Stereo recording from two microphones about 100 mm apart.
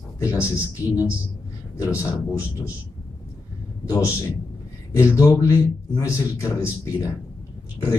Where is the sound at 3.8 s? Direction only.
35° left (ahead or behind).